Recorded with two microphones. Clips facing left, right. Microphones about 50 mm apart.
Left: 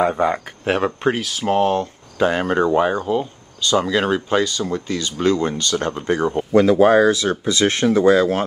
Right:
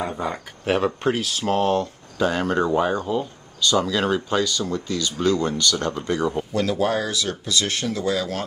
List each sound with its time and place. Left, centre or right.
0.1 s speech: left